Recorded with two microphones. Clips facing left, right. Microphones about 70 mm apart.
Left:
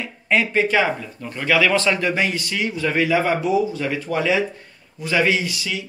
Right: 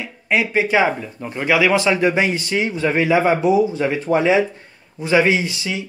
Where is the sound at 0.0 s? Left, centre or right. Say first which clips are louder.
Even; centre.